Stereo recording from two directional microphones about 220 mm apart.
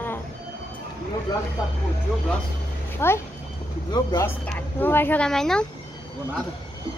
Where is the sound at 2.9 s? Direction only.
10° left (ahead or behind).